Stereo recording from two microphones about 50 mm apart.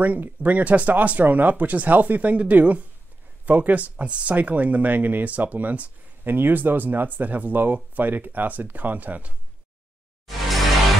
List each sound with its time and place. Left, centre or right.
0.0 s speech: right
10.2 s music: centre